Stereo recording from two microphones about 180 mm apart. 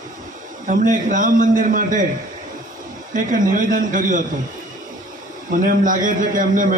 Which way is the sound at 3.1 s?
50° right (ahead or behind).